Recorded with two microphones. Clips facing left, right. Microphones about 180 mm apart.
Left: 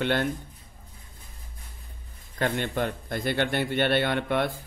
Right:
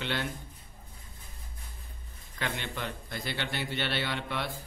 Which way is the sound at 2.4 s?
50° left (ahead or behind).